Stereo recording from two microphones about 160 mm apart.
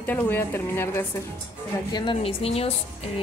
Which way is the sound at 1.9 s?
35° left (ahead or behind).